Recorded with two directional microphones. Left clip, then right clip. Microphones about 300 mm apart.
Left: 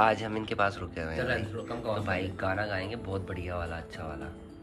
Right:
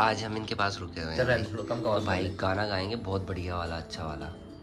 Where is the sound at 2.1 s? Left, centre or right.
Centre.